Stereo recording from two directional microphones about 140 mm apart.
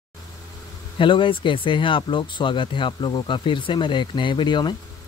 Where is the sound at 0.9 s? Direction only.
35° left (ahead or behind).